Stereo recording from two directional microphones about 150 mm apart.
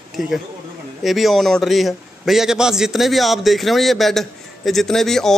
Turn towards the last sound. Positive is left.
turn(degrees=5)  # may be behind; listen again after turning